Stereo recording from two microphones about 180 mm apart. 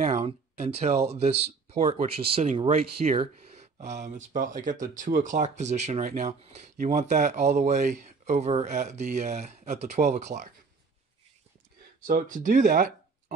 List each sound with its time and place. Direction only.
0.0 s speech: 40° right (ahead or behind)
12.0 s speech: 50° right (ahead or behind)